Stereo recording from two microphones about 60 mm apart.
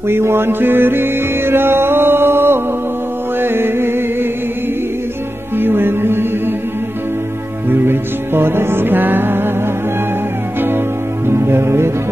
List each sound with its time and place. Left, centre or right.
0.1 s music: right
5.6 s music: right
7.7 s music: right
11.2 s music: right